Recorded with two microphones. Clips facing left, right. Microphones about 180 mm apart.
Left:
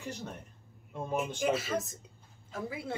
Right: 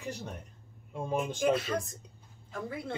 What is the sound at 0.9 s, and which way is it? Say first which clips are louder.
Speech: right 2 dB; 10° right (ahead or behind).